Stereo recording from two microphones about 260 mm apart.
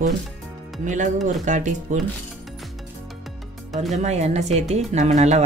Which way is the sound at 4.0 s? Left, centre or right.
Right.